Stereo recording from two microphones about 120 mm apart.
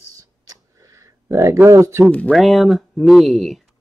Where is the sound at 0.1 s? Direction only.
30° right (ahead or behind).